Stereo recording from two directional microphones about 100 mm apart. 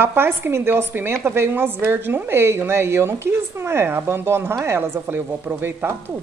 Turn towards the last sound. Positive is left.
turn(degrees=-20)  # may be behind; listen again after turning